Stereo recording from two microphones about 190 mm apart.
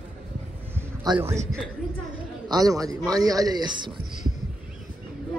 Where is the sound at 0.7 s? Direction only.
10° right (ahead or behind).